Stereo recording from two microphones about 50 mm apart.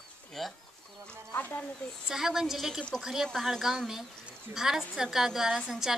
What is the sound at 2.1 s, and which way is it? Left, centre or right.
A woman's voice, centre.